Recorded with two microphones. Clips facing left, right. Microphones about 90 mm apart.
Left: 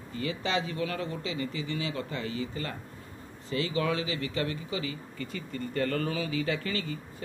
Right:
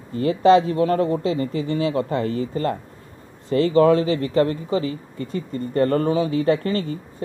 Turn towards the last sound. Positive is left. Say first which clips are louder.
# right 9 dB
turn(degrees=-40)  # may be behind; listen again after turning